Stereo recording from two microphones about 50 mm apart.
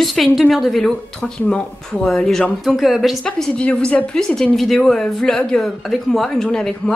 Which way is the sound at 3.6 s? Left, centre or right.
Left.